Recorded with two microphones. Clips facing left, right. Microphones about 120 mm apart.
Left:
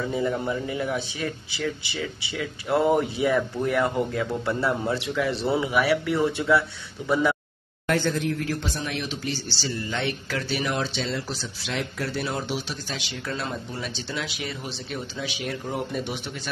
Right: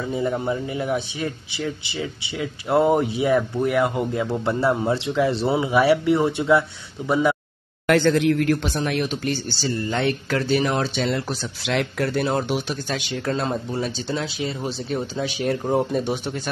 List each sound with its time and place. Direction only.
0.1 s a man's voice: 25° right (ahead or behind)
7.8 s speech: 90° right; by 8.7 s 65° right (ahead or behind)
8.7 s speech: 55° right (ahead or behind)
11.1 s speech: 60° right (ahead or behind); by 16.3 s 40° right (ahead or behind)